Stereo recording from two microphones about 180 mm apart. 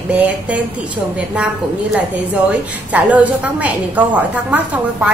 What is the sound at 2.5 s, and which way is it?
A woman's voice, 10° right (ahead or behind).